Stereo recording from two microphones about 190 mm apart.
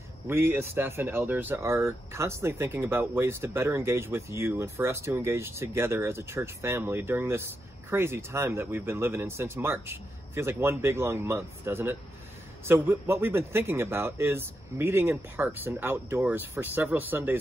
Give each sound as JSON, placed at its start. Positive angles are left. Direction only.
{"t": 0.3, "sound": "speech", "side_deg": -10}